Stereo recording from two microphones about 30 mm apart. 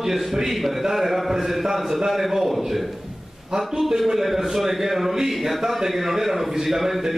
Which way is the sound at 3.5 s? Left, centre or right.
Right.